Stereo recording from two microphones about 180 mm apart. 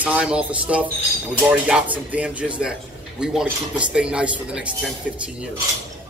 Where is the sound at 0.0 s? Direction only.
5° right (ahead or behind).